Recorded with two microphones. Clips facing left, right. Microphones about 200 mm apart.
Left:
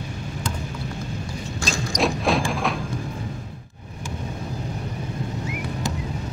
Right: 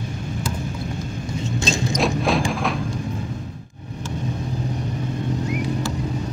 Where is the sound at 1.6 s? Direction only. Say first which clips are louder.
Right 3 dB; 25° right (ahead or behind).